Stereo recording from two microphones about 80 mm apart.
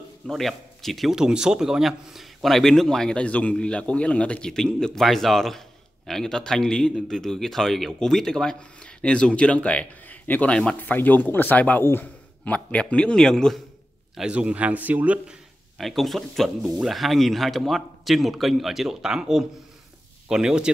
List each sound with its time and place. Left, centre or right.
0.3 s a man's voice: centre; by 10.5 s left
10.5 s a man's voice: centre
10.8 s a man's voice: left; by 13.6 s centre
14.1 s a man's voice: centre
15.8 s a man's voice: centre